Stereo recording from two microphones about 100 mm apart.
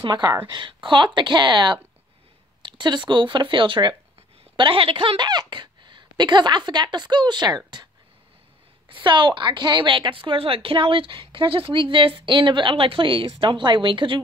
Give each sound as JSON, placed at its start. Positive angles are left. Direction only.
{"t": 0.0, "sound": "speech", "side_deg": -45}
{"t": 8.8, "sound": "a woman's voice", "side_deg": -55}